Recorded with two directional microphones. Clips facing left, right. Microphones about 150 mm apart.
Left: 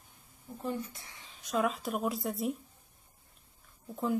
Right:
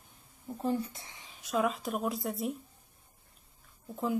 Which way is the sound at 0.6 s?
35° right (ahead or behind).